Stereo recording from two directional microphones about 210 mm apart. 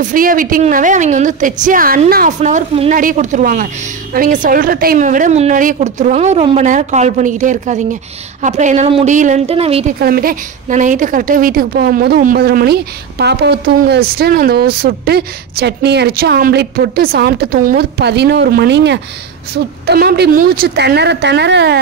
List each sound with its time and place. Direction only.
0.0 s a woman's voice: 40° right (ahead or behind)
10.0 s a woman's voice: 45° right (ahead or behind)